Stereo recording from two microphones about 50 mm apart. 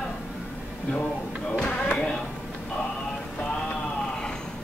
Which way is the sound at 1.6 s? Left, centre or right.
Left.